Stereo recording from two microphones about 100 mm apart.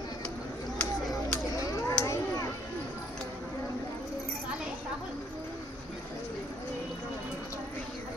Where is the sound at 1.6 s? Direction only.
35° left (ahead or behind).